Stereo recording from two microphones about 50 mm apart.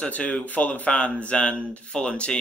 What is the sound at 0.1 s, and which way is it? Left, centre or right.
Speech, left.